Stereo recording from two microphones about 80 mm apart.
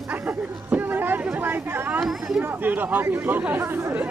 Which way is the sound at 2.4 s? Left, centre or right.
Right.